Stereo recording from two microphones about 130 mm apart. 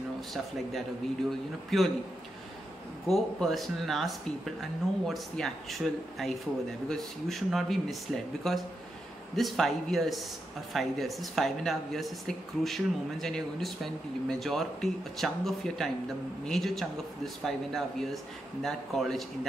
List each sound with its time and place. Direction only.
1.7 s speech: centre (ahead or behind)
3.1 s speech: centre (ahead or behind)